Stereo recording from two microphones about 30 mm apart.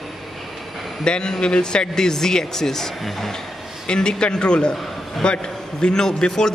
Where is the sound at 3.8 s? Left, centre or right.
Left.